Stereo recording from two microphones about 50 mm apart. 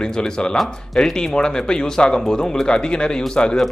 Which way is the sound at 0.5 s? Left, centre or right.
Centre.